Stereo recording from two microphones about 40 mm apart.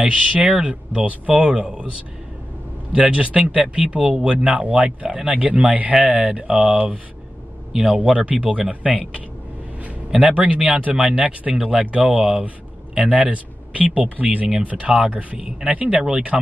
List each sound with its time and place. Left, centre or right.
0.0 s speech: right
2.9 s speech: right
10.1 s speech: right
12.1 s speech: centre
13.0 s speech: right
15.3 s speech: centre
16.1 s speech: right